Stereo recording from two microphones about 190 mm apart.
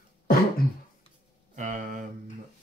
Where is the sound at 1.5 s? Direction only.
45° right (ahead or behind).